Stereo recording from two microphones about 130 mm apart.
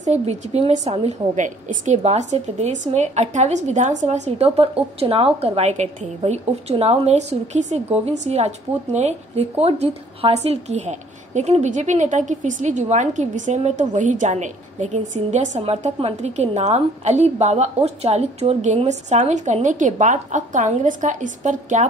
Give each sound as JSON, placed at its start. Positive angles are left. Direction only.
{"t": 0.2, "sound": "a woman's voice", "side_deg": -60}